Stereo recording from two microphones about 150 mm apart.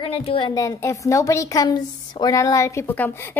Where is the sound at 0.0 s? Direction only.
40° left (ahead or behind).